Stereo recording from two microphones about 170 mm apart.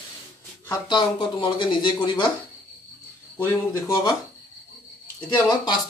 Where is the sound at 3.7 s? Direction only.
20° left (ahead or behind).